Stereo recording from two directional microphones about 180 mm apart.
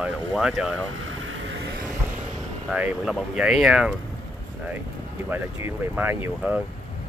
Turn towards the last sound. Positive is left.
turn(degrees=-10)  # may be behind; listen again after turning